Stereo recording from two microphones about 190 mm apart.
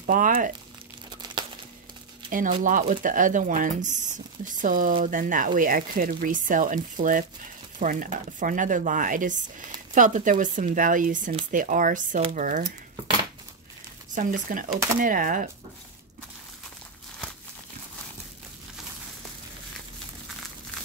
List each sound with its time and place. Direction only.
0.0 s speech: 45° right (ahead or behind)
1.4 s a sound: 20° right (ahead or behind)
2.6 s speech: 45° right (ahead or behind)
14.1 s speech: 45° right (ahead or behind)